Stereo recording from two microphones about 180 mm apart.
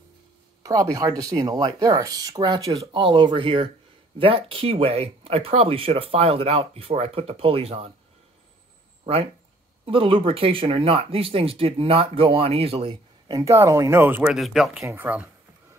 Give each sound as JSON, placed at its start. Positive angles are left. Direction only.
{"t": 0.7, "sound": "speech", "side_deg": -20}
{"t": 9.8, "sound": "speech", "side_deg": -30}
{"t": 13.3, "sound": "speech", "side_deg": -15}